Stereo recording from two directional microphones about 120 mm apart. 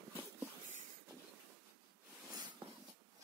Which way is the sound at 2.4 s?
30° right (ahead or behind).